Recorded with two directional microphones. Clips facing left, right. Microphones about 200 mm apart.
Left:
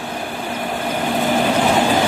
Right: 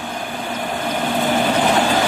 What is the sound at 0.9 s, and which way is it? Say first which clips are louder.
Vehicle: even; 5° left (ahead or behind).